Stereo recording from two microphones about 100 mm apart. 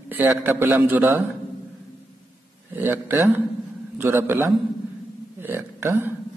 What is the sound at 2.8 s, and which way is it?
A man's voice, 20° right (ahead or behind).